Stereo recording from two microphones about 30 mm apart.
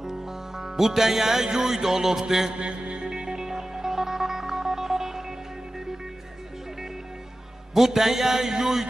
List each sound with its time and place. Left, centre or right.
0.0 s music: centre
2.6 s music: right
3.2 s music: centre
7.7 s a man's voice: centre